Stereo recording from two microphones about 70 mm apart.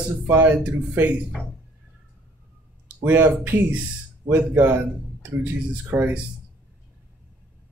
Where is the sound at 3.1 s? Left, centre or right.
Right.